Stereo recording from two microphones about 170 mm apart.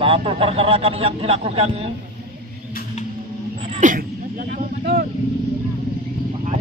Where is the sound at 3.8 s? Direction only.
45° right (ahead or behind).